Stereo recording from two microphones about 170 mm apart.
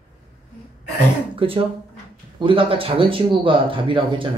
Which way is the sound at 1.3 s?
35° right (ahead or behind).